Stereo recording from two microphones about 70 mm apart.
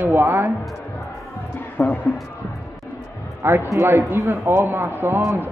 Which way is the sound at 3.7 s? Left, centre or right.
Right.